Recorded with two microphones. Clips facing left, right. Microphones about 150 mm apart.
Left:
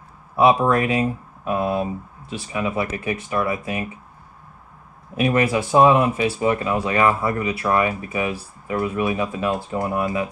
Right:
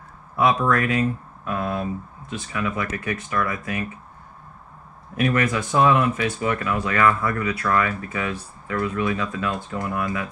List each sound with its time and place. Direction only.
0.4 s speech: 25° left (ahead or behind)
5.1 s speech: 25° left (ahead or behind)